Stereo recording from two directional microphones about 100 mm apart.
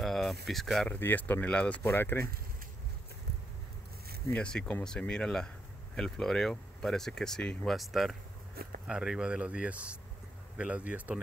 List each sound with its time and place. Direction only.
0.0 s a sound: centre (ahead or behind)
0.8 s speech: 20° left (ahead or behind)
4.4 s speech: 10° left (ahead or behind); by 11.1 s 15° right (ahead or behind)